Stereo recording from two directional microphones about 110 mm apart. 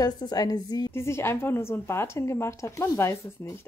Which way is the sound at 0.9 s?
20° left (ahead or behind).